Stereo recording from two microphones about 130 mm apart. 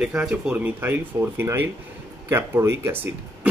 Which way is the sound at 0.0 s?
5° right (ahead or behind).